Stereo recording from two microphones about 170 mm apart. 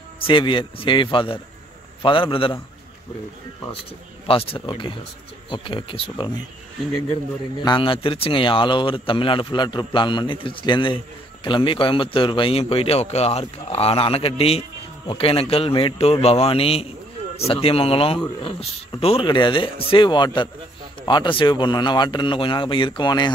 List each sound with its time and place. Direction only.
0.3 s a man's voice: 30° left (ahead or behind)
4.3 s a man's voice: 35° left (ahead or behind)
7.6 s a man's voice: 30° left (ahead or behind)